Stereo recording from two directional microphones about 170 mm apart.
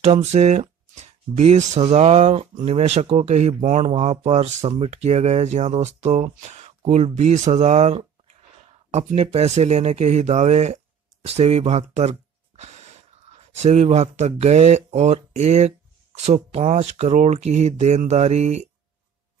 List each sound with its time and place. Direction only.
0.0 s speech: 40° right (ahead or behind)